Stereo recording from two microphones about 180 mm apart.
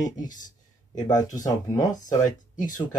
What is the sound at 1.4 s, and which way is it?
Speech, 20° left (ahead or behind).